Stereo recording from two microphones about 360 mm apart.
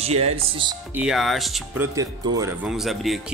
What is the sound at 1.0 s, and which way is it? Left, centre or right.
Speech, centre.